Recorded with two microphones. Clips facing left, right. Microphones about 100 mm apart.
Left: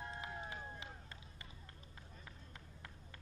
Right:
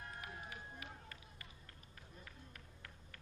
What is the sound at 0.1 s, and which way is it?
Run, 25° left (ahead or behind).